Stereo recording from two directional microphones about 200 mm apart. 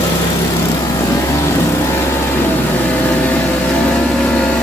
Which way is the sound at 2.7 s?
10° left (ahead or behind).